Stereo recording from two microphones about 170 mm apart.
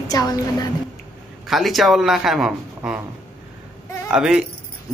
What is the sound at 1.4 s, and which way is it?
Speech, centre (ahead or behind).